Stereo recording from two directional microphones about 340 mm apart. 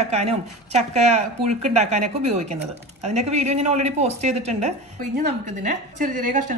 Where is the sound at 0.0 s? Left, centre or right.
Centre.